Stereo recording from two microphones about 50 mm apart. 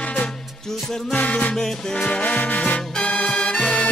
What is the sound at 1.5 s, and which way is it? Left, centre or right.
Music, centre.